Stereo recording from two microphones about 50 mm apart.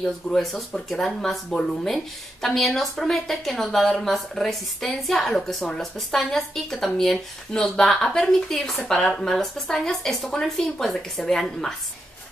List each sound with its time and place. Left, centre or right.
0.2 s speech: left
0.8 s a woman's voice: centre